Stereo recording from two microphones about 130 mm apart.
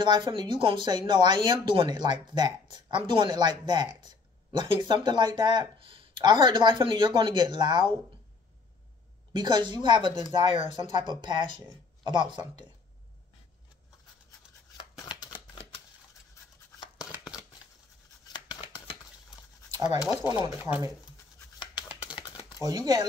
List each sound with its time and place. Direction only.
0.0 s speech: 35° right (ahead or behind)
9.3 s speech: 35° right (ahead or behind)
18.3 s scissors: 35° left (ahead or behind)
19.7 s scratch: 30° right (ahead or behind)
20.2 s speech: 30° right (ahead or behind)
21.8 s a sound: 10° right (ahead or behind)
22.6 s speech: 30° right (ahead or behind)